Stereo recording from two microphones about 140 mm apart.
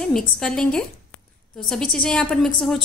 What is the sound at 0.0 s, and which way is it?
A woman's voice, 5° left (ahead or behind).